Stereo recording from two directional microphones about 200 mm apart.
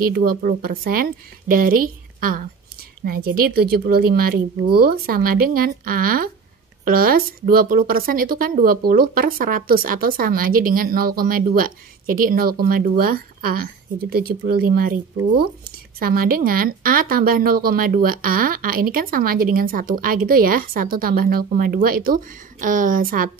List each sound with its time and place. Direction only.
0.0 s speech: 45° right (ahead or behind)